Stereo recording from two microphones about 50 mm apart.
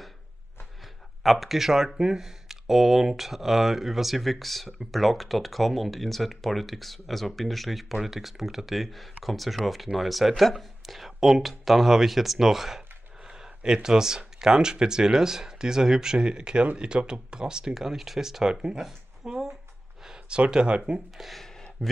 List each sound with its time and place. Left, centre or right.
1.2 s speech: centre
13.3 s a sound: centre
13.8 s speech: centre
18.9 s a sound: centre
20.1 s speech: centre
21.2 s speech: centre